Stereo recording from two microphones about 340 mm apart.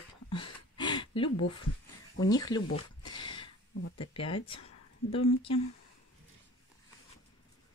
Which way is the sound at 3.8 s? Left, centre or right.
Left.